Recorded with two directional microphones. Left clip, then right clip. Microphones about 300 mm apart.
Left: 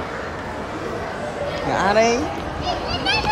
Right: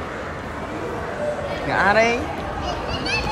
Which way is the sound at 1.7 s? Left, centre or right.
Centre.